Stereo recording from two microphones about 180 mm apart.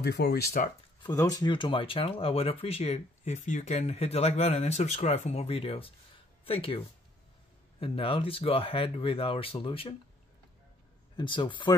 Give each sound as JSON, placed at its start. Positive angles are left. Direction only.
{"t": 0.0, "sound": "speech", "side_deg": 65}
{"t": 1.0, "sound": "speech", "side_deg": 20}
{"t": 7.8, "sound": "speech", "side_deg": 30}
{"t": 11.1, "sound": "speech", "side_deg": 25}